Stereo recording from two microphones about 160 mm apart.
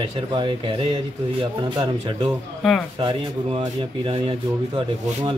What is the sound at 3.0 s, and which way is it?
Speech, 35° right (ahead or behind).